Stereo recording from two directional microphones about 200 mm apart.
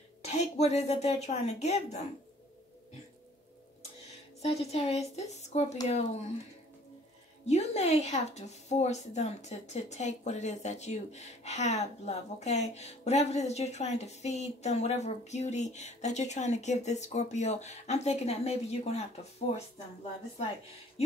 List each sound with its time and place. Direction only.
0.2 s speech: 35° left (ahead or behind)
4.4 s a woman's voice: 30° left (ahead or behind)
7.4 s a woman's voice: 35° left (ahead or behind)